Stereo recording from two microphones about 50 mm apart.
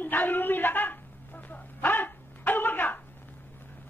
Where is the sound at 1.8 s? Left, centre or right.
Left.